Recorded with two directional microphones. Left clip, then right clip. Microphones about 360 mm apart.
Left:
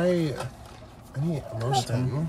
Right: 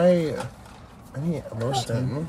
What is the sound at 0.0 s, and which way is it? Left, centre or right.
Speech, centre.